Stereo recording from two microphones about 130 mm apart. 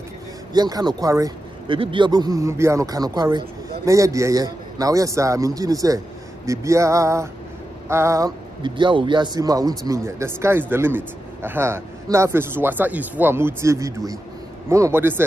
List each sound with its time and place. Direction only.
0.5 s speech: 30° right (ahead or behind)
1.7 s speech: 40° right (ahead or behind); by 8.3 s 20° right (ahead or behind)
8.6 s a man's voice: 35° right (ahead or behind); by 15.2 s 15° right (ahead or behind)